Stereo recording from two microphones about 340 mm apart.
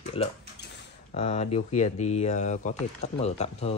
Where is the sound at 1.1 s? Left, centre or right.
Centre.